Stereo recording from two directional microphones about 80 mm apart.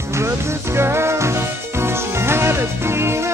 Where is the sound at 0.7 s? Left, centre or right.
Right.